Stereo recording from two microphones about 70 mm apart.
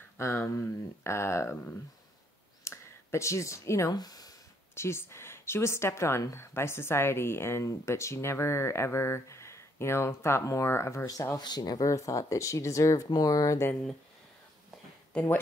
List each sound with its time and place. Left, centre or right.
0.2 s speech: left
2.6 s a sound: left
3.9 s speech: left
4.7 s speech: left
11.3 s speech: left
11.8 s speech: left
13.1 s speech: left